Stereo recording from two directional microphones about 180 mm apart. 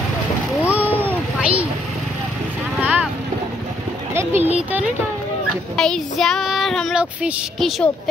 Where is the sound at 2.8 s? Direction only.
10° right (ahead or behind).